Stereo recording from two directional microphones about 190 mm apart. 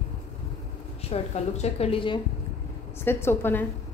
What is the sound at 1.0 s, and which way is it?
A woman's voice, 35° left (ahead or behind).